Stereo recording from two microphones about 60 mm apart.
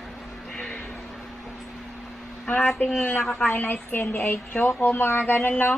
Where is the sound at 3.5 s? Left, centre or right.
Left.